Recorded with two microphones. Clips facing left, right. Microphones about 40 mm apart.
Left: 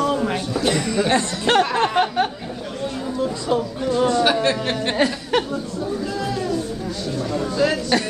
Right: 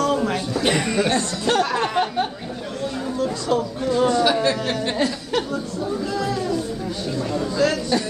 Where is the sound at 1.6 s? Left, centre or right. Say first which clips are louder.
Left 2 dB; left.